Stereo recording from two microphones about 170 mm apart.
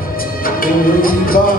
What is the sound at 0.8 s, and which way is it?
Music, 60° left (ahead or behind).